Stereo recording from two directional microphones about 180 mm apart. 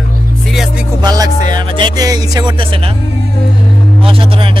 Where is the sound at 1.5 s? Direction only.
25° right (ahead or behind).